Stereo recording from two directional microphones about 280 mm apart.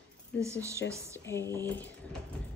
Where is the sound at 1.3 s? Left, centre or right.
Centre.